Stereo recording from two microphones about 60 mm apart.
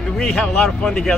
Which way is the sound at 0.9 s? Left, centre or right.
Centre.